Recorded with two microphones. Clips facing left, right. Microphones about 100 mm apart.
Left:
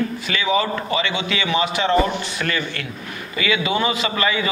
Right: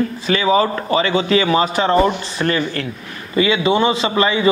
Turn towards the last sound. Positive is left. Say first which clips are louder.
# right 4 dB
turn(degrees=-30)  # may be behind; listen again after turning